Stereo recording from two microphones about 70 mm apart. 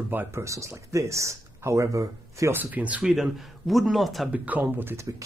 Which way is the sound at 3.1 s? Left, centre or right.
Centre.